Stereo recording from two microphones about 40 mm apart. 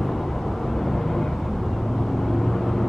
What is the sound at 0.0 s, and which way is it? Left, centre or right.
Vehicle, centre.